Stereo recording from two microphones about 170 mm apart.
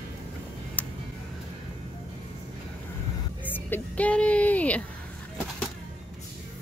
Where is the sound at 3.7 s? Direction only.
10° left (ahead or behind).